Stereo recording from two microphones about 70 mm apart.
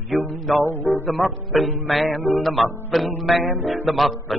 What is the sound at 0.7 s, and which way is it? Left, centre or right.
Speech, left.